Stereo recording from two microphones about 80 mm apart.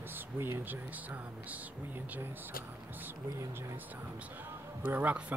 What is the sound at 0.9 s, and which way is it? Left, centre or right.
Speech, centre.